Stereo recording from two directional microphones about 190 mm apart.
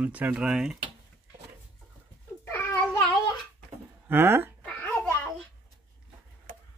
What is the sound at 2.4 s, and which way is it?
Babbling, 10° left (ahead or behind).